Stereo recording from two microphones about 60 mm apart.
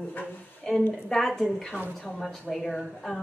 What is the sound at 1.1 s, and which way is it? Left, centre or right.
A woman's voice, centre.